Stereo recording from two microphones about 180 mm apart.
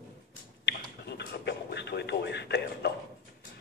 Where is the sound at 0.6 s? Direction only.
70° left (ahead or behind).